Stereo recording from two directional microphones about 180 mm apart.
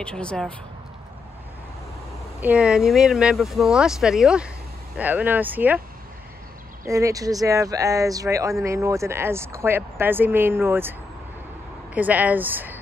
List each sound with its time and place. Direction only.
0.0 s speech: 5° left (ahead or behind)
2.4 s speech: 5° right (ahead or behind)
6.9 s speech: 20° right (ahead or behind)